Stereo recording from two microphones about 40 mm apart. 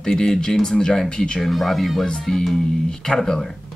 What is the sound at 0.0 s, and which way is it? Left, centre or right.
Speech, centre.